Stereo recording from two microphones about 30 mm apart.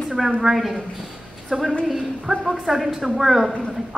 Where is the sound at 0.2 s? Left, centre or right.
Centre.